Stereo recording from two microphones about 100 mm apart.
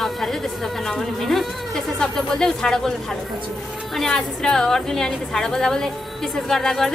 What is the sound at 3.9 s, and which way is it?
Speech, 5° left (ahead or behind).